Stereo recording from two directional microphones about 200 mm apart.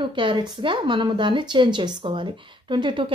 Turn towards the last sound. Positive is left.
turn(degrees=-25)  # may be behind; listen again after turning